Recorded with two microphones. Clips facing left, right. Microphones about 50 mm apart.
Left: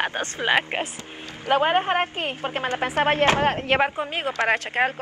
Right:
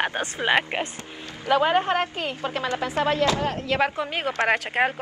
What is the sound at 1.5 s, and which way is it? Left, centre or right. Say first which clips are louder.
A woman's voice: even; left.